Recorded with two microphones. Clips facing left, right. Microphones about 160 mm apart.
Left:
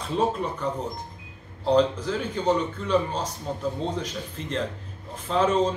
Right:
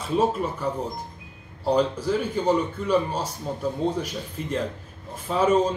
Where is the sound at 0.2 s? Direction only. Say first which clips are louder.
Even; 5° right (ahead or behind).